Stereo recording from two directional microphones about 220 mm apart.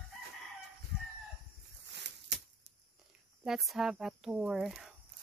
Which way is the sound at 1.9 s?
50° right (ahead or behind).